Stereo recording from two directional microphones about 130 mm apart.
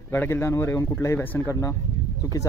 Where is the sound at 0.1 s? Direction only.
20° left (ahead or behind).